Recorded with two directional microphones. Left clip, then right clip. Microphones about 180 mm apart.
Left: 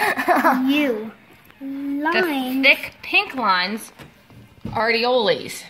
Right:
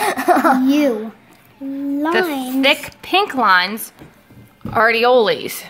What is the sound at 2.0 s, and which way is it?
A woman's voice, 40° right (ahead or behind).